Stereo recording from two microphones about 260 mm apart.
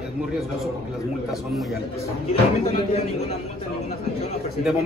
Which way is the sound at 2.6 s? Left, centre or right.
Left.